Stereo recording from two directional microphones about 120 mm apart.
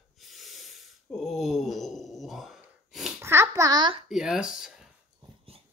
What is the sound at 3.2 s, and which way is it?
Speech, 20° right (ahead or behind).